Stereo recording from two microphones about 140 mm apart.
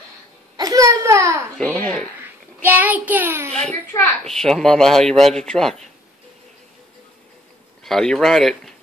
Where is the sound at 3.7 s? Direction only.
5° left (ahead or behind).